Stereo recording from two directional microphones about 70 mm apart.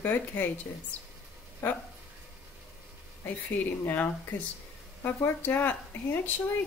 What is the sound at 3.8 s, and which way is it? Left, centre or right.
Speech, left.